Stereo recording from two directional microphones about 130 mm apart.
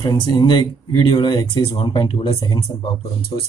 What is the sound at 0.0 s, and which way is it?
Speech, 30° left (ahead or behind).